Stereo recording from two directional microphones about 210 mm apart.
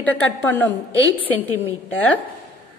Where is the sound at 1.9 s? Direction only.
5° left (ahead or behind).